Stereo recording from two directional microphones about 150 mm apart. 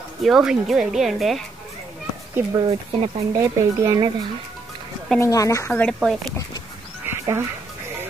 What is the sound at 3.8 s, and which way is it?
Speech, 25° right (ahead or behind).